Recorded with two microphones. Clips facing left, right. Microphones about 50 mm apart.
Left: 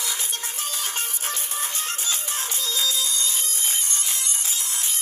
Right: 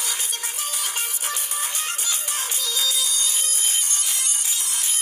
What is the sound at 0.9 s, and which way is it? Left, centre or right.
Music, centre.